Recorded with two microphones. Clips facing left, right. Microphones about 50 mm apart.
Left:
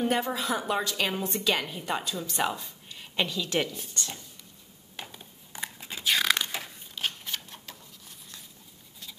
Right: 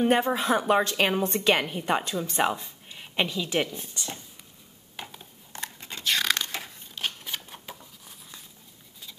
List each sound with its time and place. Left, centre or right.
0.0 s a woman's voice: right; by 4.2 s centre
4.9 s a sound: centre
5.5 s biting: centre
7.3 s patter: centre